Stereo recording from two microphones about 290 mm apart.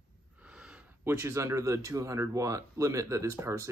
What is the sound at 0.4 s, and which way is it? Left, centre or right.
Speech, centre.